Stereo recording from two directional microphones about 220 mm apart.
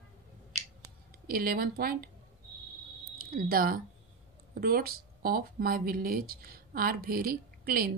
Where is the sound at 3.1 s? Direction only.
40° right (ahead or behind).